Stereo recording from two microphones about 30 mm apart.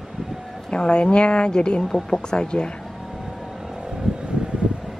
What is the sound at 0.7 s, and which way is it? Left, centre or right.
A woman's voice, left.